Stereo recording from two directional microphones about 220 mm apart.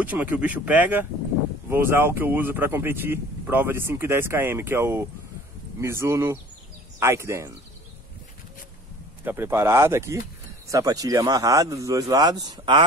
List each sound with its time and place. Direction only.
0.0 s speech: 5° right (ahead or behind)
9.2 s speech: 10° right (ahead or behind)